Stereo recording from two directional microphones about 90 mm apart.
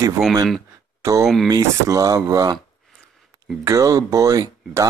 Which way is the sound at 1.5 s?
45° right (ahead or behind).